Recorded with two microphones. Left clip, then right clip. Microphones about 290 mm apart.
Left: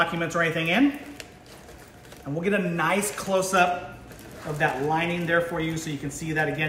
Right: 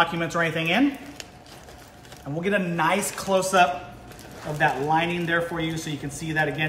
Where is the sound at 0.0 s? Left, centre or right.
Centre.